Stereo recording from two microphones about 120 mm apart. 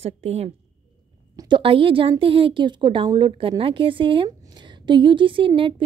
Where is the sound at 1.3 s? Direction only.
40° right (ahead or behind).